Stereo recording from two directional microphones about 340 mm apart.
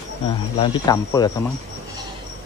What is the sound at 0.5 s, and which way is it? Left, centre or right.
Speech, centre.